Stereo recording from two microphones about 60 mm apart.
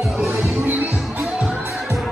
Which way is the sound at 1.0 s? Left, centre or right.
Centre.